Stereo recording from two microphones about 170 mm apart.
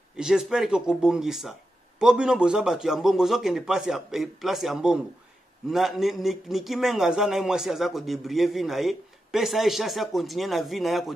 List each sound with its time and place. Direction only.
0.1 s a man's voice: 5° right (ahead or behind)